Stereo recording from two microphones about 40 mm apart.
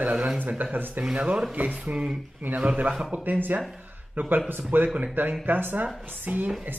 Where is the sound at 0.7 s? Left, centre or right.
Right.